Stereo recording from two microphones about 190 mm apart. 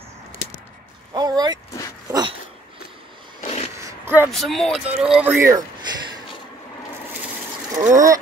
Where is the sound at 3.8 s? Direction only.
15° right (ahead or behind).